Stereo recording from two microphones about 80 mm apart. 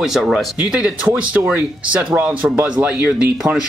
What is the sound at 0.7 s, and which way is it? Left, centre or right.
Speech, centre.